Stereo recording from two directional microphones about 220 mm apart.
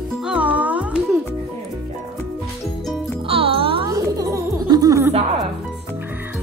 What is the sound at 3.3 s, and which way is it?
Music, 25° right (ahead or behind).